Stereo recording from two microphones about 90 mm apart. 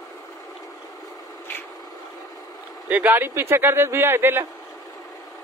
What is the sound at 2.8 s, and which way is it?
A man's voice, 20° right (ahead or behind).